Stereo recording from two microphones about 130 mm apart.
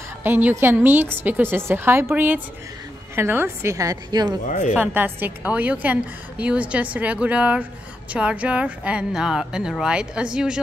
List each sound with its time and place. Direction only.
0.2 s a woman's voice: 15° right (ahead or behind); by 4.4 s 30° right (ahead or behind)
4.5 s speech: 75° left (ahead or behind)
4.7 s a woman's voice: 15° right (ahead or behind)